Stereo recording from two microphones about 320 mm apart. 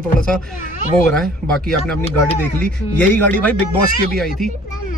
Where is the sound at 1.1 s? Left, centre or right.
Centre.